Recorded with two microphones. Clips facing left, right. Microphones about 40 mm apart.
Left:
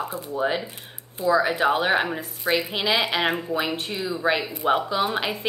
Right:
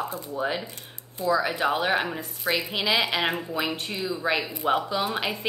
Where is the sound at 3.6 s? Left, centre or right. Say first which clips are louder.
Left 2 dB; centre.